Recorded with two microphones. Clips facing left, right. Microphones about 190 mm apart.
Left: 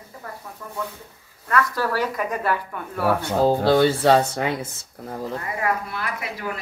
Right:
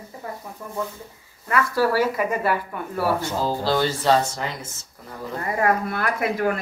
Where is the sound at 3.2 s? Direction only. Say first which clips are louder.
Left 5 dB; 60° left (ahead or behind).